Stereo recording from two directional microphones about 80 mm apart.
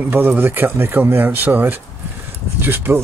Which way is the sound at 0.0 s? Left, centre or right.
Right.